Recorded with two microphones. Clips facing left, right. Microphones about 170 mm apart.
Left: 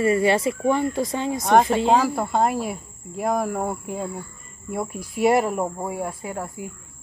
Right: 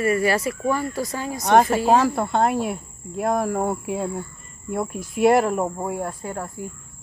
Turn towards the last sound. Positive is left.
turn(degrees=10)  # may be behind; listen again after turning